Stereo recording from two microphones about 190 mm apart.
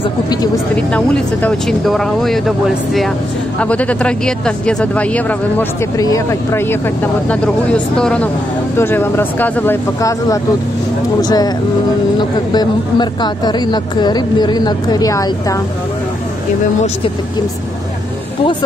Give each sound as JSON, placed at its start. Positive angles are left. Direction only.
{"t": 0.7, "sound": "speech", "side_deg": 5}
{"t": 5.9, "sound": "a woman's voice", "side_deg": 20}